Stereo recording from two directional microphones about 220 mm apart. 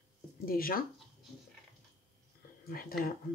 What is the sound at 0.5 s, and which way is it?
Speech, 40° left (ahead or behind).